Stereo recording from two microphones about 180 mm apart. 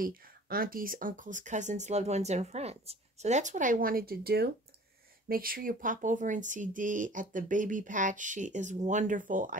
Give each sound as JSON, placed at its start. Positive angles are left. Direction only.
{"t": 0.0, "sound": "speech", "side_deg": -55}